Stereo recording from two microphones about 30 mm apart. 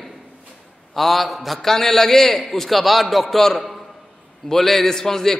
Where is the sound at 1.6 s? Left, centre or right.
Centre.